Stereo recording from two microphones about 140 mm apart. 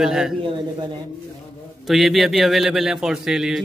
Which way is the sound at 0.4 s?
35° right (ahead or behind).